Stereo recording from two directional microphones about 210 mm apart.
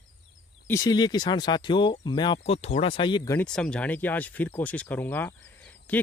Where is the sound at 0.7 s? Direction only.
15° left (ahead or behind).